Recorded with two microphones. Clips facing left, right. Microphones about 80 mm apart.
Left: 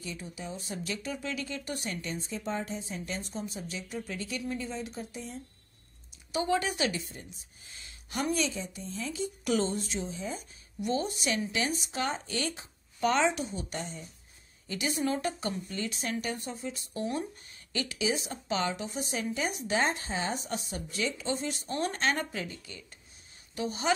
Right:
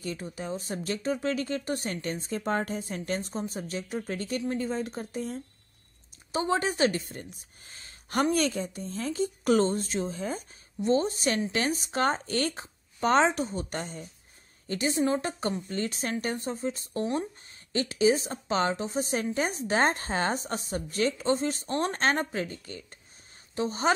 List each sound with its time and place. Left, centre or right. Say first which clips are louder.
0.0 s speech: right 5 dB; right
6.3 s speech: right 2 dB; right
10.8 s speech: right 6 dB; right
14.7 s a woman's voice: right 4 dB; right